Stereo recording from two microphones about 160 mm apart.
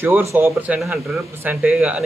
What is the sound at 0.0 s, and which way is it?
Speech, 15° right (ahead or behind).